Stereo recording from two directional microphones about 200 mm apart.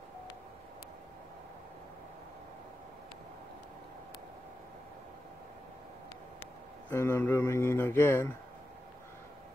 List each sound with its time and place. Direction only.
6.9 s speech: 10° left (ahead or behind)